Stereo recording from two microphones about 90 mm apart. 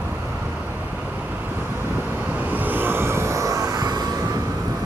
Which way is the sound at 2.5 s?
20° right (ahead or behind).